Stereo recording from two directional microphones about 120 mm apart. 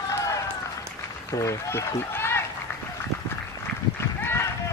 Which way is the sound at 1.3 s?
25° left (ahead or behind).